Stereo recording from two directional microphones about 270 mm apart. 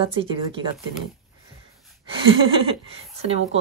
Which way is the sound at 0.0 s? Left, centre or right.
Centre.